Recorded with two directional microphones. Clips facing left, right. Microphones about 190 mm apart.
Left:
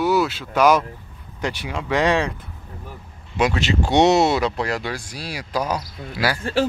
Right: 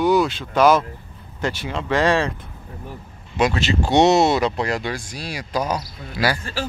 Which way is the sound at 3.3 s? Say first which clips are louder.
Even; 10° left (ahead or behind).